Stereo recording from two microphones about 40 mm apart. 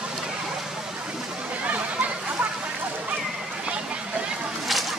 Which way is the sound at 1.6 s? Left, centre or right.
Right.